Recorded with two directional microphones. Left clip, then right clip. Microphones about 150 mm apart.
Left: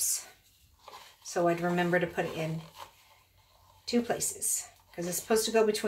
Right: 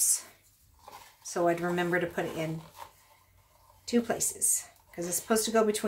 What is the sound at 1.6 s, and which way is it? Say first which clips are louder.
Speech: left 1 dB; 40° right (ahead or behind).